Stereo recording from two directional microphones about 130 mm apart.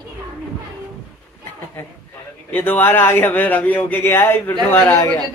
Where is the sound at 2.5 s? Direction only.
15° left (ahead or behind).